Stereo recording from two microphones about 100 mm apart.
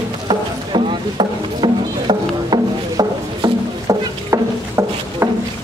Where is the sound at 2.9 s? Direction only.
40° right (ahead or behind).